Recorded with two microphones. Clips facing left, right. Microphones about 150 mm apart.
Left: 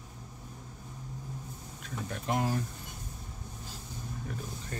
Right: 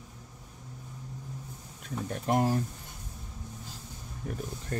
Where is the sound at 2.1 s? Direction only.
40° right (ahead or behind).